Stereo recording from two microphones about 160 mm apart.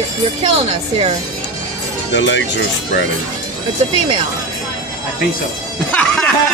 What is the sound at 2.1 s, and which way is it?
Speech, 90° left.